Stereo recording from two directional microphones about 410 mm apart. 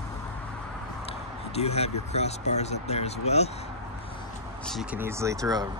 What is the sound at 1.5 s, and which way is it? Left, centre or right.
Speech, centre.